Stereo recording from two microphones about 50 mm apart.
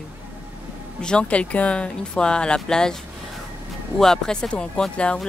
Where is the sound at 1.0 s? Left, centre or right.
Centre.